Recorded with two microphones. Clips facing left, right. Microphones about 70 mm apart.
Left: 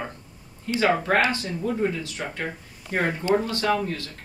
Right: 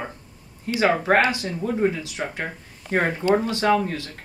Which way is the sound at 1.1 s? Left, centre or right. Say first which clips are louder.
Right 3 dB; right.